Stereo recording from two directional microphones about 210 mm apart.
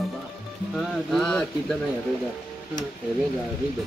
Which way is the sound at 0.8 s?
Centre (ahead or behind).